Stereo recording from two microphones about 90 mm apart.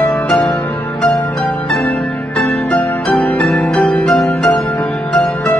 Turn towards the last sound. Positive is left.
turn(degrees=10)  # may be behind; listen again after turning